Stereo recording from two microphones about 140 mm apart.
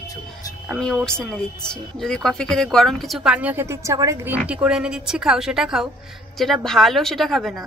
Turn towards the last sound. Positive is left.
turn(degrees=0)  # may be behind; listen again after turning